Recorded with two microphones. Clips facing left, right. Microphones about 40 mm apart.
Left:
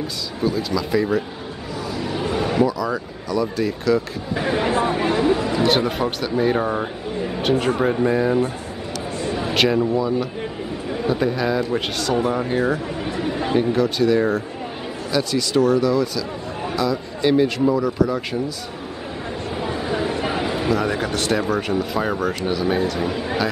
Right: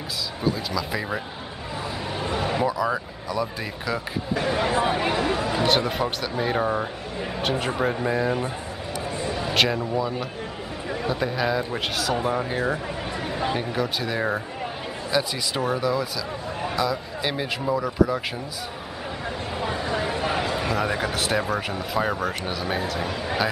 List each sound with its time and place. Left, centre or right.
0.4 s speech: centre
2.1 s a sound: centre
2.6 s speech: centre
4.4 s speech: centre
19.5 s a sound: centre
20.7 s speech: centre